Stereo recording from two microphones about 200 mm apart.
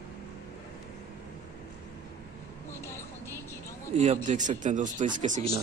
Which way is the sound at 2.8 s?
15° left (ahead or behind).